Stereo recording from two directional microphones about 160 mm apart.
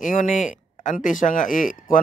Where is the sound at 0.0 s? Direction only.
55° left (ahead or behind).